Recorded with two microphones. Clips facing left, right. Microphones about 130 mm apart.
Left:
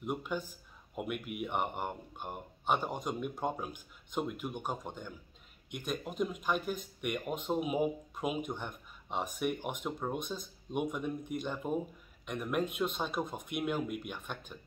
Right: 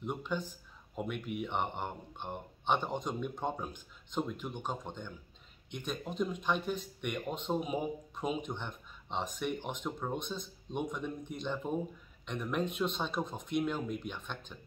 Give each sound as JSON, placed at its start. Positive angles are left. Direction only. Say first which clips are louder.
{"t": 0.0, "sound": "speech", "louder": "even", "side_deg": 10}